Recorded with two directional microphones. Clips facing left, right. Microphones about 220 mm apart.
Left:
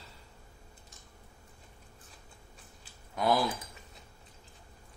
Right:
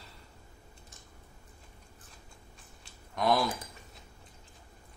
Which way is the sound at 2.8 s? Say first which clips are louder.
Even; 5° left (ahead or behind).